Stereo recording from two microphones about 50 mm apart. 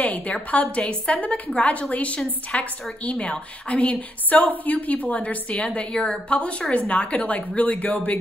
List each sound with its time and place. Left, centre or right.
0.0 s a woman's voice: left